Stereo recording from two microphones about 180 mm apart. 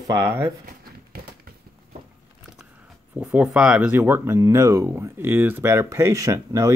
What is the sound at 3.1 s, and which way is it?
Speech, 5° right (ahead or behind).